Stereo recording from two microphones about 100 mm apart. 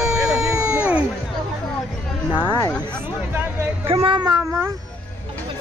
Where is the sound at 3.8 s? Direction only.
65° right (ahead or behind).